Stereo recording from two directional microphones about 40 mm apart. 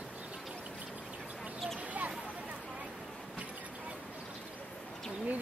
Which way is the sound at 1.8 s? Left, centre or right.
Right.